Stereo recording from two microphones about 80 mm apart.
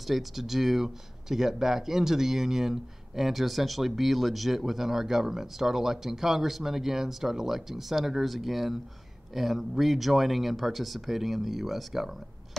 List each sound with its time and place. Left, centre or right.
0.0 s speech: centre